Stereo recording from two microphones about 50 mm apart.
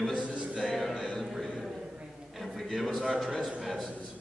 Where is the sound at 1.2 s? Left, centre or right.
Centre.